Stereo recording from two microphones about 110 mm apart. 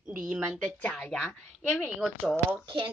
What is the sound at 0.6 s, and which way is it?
Speech, 10° left (ahead or behind).